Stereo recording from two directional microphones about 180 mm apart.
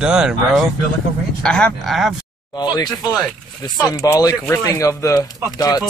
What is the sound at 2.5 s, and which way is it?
Speech, 20° left (ahead or behind).